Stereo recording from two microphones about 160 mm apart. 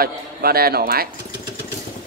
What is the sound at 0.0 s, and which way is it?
A man's voice, 70° right (ahead or behind).